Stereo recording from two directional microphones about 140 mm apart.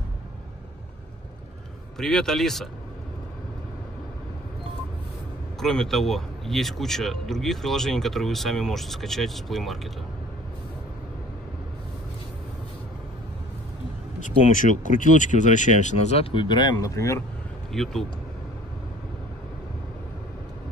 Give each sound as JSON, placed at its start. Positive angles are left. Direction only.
{"t": 2.0, "sound": "a man's voice", "side_deg": 5}
{"t": 5.6, "sound": "a man's voice", "side_deg": 5}
{"t": 14.2, "sound": "speech", "side_deg": 65}
{"t": 17.7, "sound": "a man's voice", "side_deg": 5}